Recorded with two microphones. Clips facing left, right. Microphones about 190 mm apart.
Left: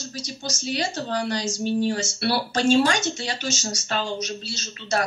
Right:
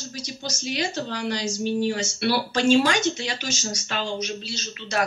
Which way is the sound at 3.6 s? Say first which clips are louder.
Left 2 dB; 45° left (ahead or behind).